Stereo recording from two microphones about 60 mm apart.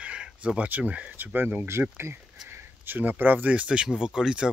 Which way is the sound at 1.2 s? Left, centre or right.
Right.